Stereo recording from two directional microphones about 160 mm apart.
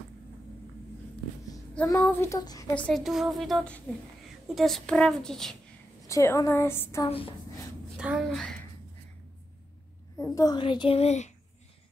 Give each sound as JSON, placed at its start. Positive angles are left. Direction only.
{"t": 1.9, "sound": "speech", "side_deg": 15}
{"t": 2.7, "sound": "speech", "side_deg": 5}
{"t": 6.0, "sound": "a woman's voice", "side_deg": 20}
{"t": 7.1, "sound": "a child's voice", "side_deg": 35}
{"t": 8.0, "sound": "a child's voice", "side_deg": -5}
{"t": 10.1, "sound": "a child's voice", "side_deg": 20}